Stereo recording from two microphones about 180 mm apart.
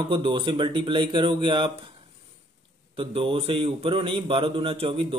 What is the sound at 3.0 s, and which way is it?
A man's voice, 30° right (ahead or behind).